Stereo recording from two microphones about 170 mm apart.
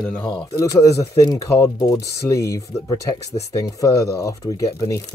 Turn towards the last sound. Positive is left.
turn(degrees=20)  # may be behind; listen again after turning